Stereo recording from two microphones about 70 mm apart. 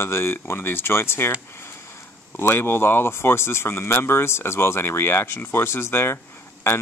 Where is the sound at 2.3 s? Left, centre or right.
Left.